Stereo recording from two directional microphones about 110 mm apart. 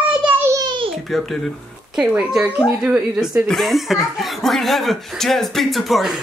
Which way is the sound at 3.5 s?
Centre (ahead or behind).